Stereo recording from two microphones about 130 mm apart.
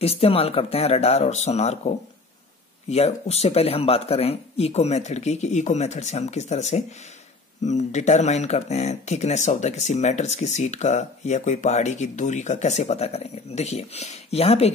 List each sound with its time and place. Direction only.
0.0 s speech: 50° left (ahead or behind)